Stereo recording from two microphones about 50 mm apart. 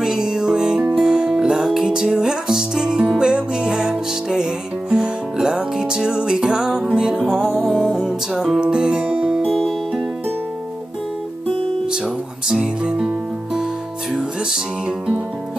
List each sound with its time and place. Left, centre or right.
0.0 s music: centre
1.9 s music: centre
9.3 s music: centre
11.9 s music: centre